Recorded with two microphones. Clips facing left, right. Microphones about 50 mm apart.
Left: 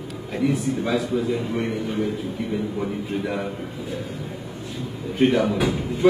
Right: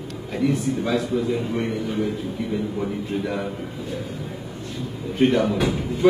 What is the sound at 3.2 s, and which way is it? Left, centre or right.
Speech, centre.